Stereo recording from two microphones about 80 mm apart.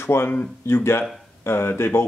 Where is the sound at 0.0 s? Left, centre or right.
Left.